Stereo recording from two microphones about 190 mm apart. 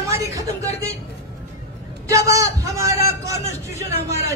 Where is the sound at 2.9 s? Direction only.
15° right (ahead or behind).